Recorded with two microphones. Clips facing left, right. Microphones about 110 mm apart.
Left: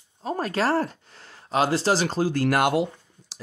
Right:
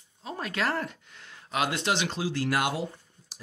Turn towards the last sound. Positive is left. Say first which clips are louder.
# left 5 dB
turn(degrees=80)